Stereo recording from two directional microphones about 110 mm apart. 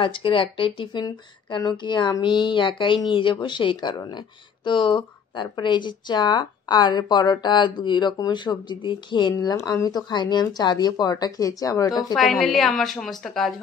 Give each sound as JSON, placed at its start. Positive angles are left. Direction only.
{"t": 0.0, "sound": "speech", "side_deg": 50}
{"t": 1.0, "sound": "speech", "side_deg": 40}
{"t": 12.2, "sound": "a woman's voice", "side_deg": 0}